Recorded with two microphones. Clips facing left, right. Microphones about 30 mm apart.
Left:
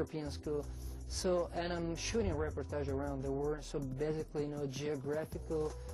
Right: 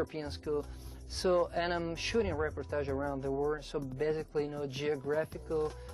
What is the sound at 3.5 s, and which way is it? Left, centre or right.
Speech, right.